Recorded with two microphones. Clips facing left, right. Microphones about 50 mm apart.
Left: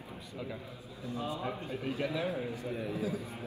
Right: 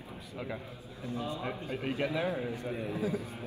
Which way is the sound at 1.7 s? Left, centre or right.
Right.